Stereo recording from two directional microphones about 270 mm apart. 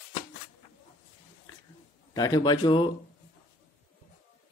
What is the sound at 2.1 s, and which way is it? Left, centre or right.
Speech, centre.